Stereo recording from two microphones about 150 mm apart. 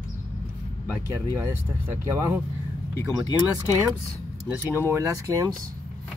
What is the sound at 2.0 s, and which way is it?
Speech, 20° right (ahead or behind).